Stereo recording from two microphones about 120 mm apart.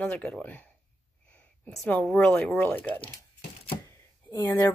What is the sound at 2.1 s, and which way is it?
Speech, 10° left (ahead or behind).